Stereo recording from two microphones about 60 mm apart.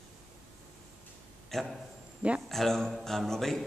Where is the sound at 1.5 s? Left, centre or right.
Centre.